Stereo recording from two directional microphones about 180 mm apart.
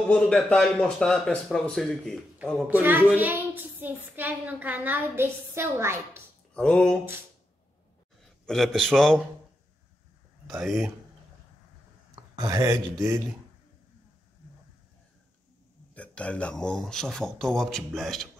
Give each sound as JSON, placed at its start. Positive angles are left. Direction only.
{"t": 0.1, "sound": "speech", "side_deg": 5}
{"t": 2.7, "sound": "a woman's voice", "side_deg": -10}
{"t": 6.5, "sound": "speech", "side_deg": 5}
{"t": 8.5, "sound": "speech", "side_deg": 0}
{"t": 10.6, "sound": "speech", "side_deg": 0}
{"t": 12.4, "sound": "speech", "side_deg": -20}
{"t": 15.9, "sound": "speech", "side_deg": 5}